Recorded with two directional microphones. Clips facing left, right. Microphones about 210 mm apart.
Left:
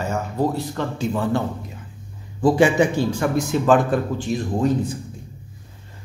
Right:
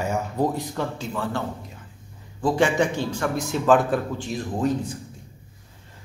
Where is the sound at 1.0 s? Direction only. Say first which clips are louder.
Left 7 dB; 15° left (ahead or behind).